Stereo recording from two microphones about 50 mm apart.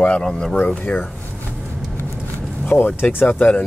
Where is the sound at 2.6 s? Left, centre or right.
Left.